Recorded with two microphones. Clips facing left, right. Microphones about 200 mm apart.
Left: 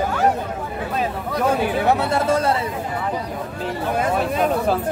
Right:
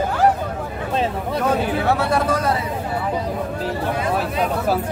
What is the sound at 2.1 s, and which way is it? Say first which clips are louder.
Speech: left 1 dB; 25° left (ahead or behind).